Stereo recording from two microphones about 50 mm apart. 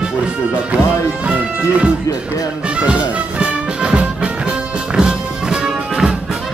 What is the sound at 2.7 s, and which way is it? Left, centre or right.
Music, right.